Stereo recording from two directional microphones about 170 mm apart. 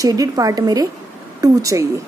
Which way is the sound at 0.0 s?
20° right (ahead or behind).